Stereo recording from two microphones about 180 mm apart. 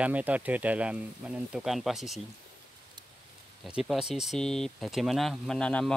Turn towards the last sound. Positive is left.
turn(degrees=5)  # may be behind; listen again after turning